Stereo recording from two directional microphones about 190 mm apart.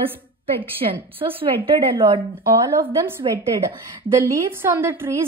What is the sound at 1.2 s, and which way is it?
A woman's voice, 25° right (ahead or behind).